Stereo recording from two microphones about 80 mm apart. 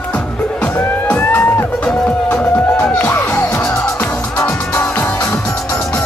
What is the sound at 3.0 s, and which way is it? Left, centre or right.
Music, left.